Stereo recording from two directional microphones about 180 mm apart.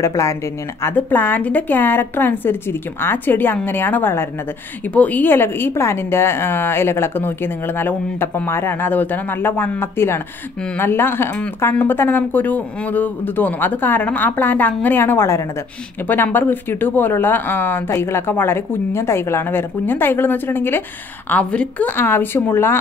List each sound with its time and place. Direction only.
0.0 s a woman's voice: 15° left (ahead or behind)